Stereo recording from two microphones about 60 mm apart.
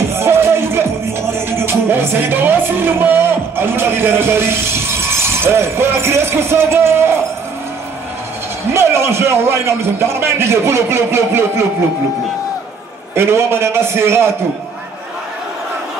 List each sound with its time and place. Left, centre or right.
0.1 s music: right
8.7 s a man's voice: right
13.1 s a man's voice: right